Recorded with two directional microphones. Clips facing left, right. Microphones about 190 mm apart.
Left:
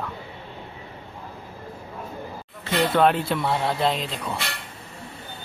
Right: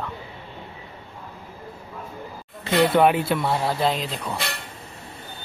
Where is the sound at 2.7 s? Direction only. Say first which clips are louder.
Right 2 dB; 10° right (ahead or behind).